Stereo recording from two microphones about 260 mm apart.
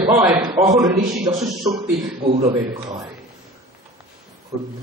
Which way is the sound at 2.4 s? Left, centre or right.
Centre.